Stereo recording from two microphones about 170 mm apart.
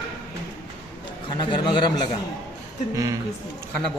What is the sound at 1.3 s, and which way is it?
Speech, 25° left (ahead or behind).